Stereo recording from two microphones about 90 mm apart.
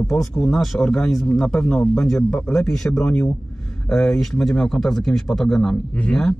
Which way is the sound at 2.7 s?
5° left (ahead or behind).